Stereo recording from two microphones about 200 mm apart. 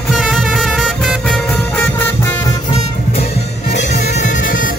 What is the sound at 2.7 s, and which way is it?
Music, 30° left (ahead or behind).